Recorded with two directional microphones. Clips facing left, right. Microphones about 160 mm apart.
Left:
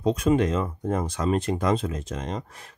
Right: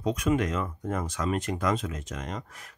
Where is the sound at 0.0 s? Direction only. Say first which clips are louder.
Left 5 dB; 30° left (ahead or behind).